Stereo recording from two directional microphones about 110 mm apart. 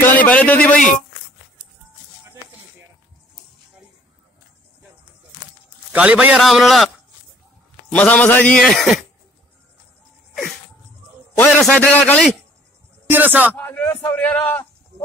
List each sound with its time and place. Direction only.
0.0 s a man's voice: 15° left (ahead or behind)
5.9 s a man's voice: 10° right (ahead or behind)
7.9 s a man's voice: 15° left (ahead or behind)
8.5 s a man's voice: centre (ahead or behind)
11.6 s a man's voice: 15° left (ahead or behind)
13.1 s speech: 15° right (ahead or behind)
13.6 s a man's voice: 15° left (ahead or behind)